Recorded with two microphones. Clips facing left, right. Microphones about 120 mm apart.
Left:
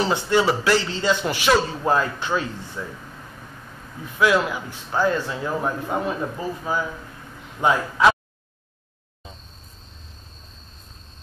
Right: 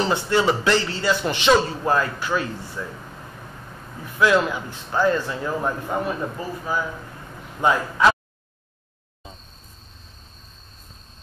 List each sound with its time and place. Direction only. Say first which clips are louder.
0.0 s a man's voice: even; 15° left (ahead or behind)
2.8 s a man's voice: even; 10° left (ahead or behind)
4.2 s a man's voice: right 1 dB; 10° left (ahead or behind)